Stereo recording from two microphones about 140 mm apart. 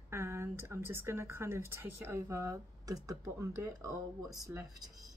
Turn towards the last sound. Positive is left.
turn(degrees=-25)  # may be behind; listen again after turning